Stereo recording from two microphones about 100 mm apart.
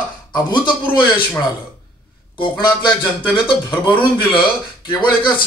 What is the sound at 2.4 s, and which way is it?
Speech, 55° left (ahead or behind).